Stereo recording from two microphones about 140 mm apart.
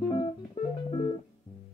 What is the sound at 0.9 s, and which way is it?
Music, 40° left (ahead or behind).